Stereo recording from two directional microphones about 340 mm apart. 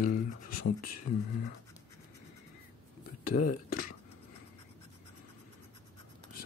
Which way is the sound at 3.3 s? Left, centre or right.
Left.